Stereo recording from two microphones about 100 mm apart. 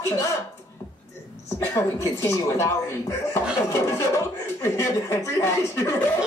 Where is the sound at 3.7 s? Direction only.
30° left (ahead or behind).